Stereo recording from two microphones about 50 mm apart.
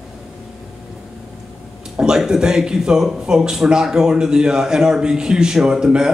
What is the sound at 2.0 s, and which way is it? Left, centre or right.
Speech, centre.